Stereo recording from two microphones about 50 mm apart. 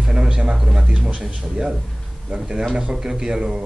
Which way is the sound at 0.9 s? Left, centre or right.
Right.